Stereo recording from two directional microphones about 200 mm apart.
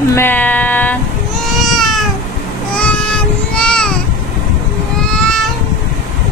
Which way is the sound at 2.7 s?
5° left (ahead or behind).